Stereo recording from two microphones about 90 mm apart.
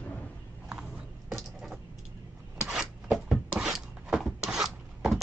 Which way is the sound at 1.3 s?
Centre (ahead or behind).